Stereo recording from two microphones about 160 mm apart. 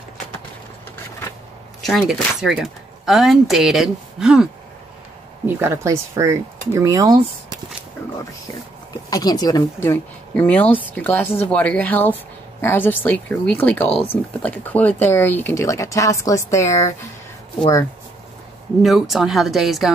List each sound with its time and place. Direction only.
1.8 s speech: centre (ahead or behind)
5.6 s speech: 20° right (ahead or behind)
9.1 s speech: 25° left (ahead or behind)
9.8 s speech: 10° left (ahead or behind)
18.8 s speech: centre (ahead or behind)